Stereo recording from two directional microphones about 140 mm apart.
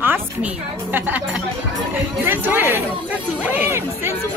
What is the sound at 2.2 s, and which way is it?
Speech, 15° right (ahead or behind).